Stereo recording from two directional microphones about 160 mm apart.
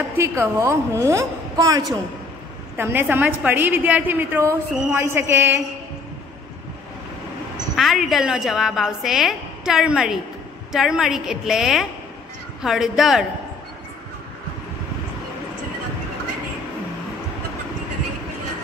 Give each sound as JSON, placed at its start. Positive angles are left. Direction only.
{"t": 0.2, "sound": "a woman's voice", "side_deg": -15}
{"t": 2.8, "sound": "a woman's voice", "side_deg": -15}
{"t": 7.7, "sound": "a woman's voice", "side_deg": 0}